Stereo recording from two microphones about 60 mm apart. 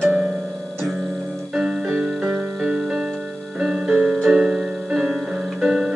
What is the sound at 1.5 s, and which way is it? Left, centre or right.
Keyboard, centre.